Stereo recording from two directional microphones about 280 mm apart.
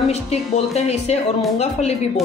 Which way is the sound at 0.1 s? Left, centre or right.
Left.